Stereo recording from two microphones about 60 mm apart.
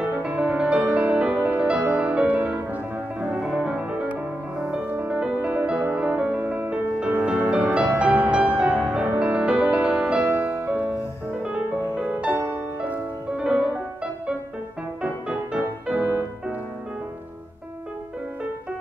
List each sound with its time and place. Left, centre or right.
0.2 s music: centre
4.8 s music: right
12.3 s music: right
13.4 s music: centre
15.0 s music: centre
16.0 s music: right